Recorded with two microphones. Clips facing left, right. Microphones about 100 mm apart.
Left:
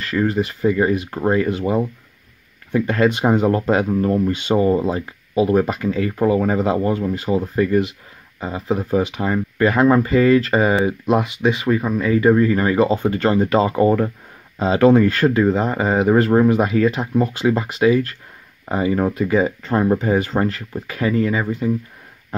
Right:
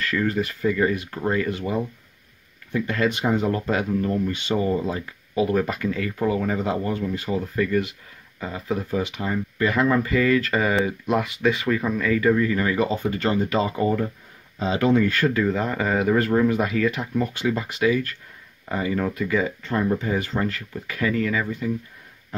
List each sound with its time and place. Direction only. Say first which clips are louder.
0.0 s speech: left 4 dB; 25° left (ahead or behind)
3.3 s speech: left 6 dB; 30° left (ahead or behind)
9.2 s speech: left 6 dB; 40° left (ahead or behind)
13.2 s speech: left 6 dB; 45° left (ahead or behind)